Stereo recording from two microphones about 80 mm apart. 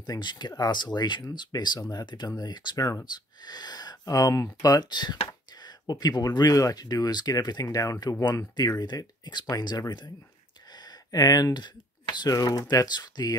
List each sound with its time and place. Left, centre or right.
0.0 s speech: left